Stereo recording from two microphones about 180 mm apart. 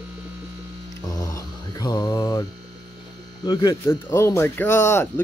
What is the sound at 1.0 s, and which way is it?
Mantra, 20° left (ahead or behind).